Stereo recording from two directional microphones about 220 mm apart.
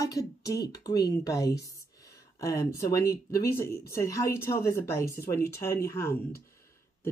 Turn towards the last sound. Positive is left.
turn(degrees=10)  # may be behind; listen again after turning